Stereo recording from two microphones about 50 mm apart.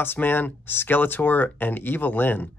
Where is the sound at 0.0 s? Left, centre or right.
Left.